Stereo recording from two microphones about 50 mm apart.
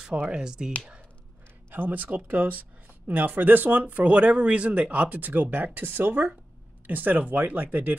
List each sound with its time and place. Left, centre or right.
0.3 s speech: centre
1.7 s speech: right